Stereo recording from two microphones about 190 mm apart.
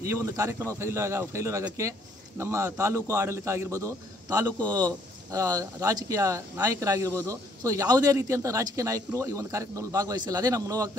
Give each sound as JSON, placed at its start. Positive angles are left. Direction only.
{"t": 0.0, "sound": "speech", "side_deg": -15}